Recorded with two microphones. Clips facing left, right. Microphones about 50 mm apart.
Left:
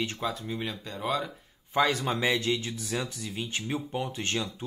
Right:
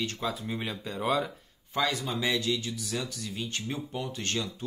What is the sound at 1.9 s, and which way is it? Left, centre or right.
Speech, left.